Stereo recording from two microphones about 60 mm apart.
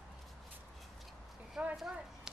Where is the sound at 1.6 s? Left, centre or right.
Centre.